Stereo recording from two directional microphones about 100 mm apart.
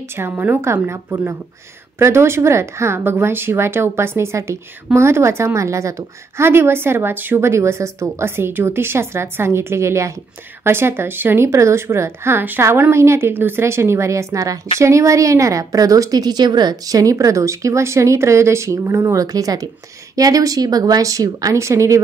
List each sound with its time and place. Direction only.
0.2 s a woman's voice: 20° right (ahead or behind)